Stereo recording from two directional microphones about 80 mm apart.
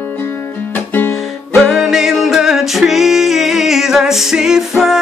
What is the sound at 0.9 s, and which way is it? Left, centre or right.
Music, left.